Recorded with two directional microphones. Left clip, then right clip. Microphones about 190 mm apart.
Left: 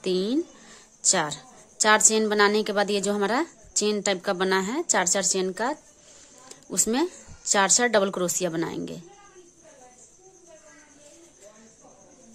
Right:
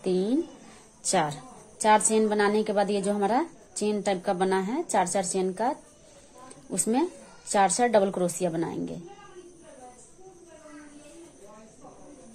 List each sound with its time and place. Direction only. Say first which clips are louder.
0.0 s speech: left 1 dB; 30° left (ahead or behind)
1.0 s a woman's voice: left 1 dB; 20° left (ahead or behind)